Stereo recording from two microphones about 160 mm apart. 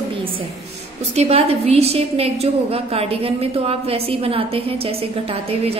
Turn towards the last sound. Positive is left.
turn(degrees=-40)  # may be behind; listen again after turning